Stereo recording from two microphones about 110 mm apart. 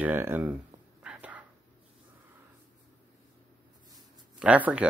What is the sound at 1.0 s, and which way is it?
Whispering, 10° right (ahead or behind).